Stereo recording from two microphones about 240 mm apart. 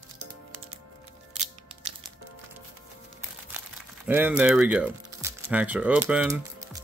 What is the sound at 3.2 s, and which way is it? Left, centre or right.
Crumpling, centre.